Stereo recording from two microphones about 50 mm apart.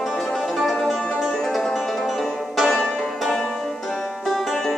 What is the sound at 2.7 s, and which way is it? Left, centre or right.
Music, centre.